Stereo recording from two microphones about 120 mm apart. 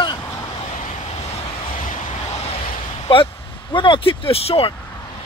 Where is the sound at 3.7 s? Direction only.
45° left (ahead or behind).